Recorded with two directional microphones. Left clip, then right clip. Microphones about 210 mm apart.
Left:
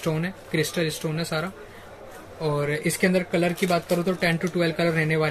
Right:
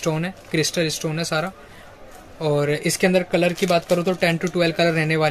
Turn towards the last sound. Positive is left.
turn(degrees=-50)  # may be behind; listen again after turning